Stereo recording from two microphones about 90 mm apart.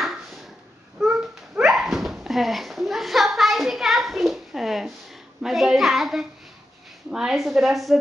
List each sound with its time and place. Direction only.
0.0 s ping: centre (ahead or behind)
0.9 s dog: 5° right (ahead or behind)
5.4 s a woman's voice: 5° right (ahead or behind)